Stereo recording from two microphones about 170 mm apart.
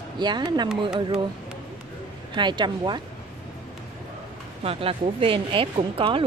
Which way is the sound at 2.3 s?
25° right (ahead or behind).